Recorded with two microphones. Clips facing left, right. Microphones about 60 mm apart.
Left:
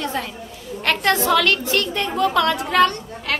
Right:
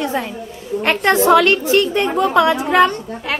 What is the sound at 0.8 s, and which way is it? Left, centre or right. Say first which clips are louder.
A woman's voice: right 5 dB; right.